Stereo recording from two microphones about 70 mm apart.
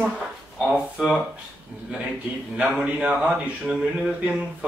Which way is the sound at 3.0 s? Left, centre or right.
Centre.